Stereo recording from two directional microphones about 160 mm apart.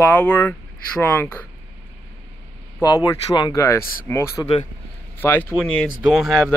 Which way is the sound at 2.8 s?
25° left (ahead or behind).